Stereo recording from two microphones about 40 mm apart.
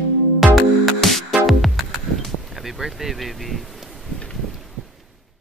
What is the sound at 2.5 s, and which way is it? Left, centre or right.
Speech, centre.